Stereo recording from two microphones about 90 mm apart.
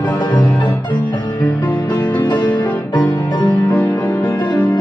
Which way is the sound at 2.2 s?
55° left (ahead or behind).